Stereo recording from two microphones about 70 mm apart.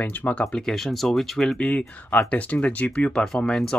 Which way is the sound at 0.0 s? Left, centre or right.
Left.